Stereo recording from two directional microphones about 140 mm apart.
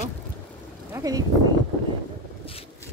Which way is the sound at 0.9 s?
25° right (ahead or behind).